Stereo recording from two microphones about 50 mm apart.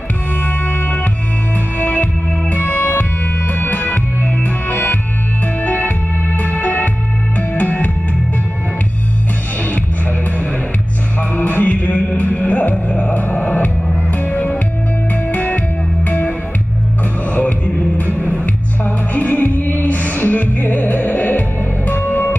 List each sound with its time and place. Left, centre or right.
0.4 s music: left
11.1 s music: left